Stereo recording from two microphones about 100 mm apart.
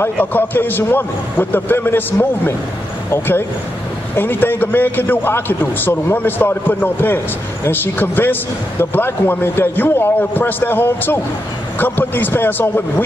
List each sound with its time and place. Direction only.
0.0 s speech: 20° left (ahead or behind)